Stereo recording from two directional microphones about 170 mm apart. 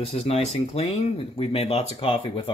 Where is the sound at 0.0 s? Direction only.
35° left (ahead or behind).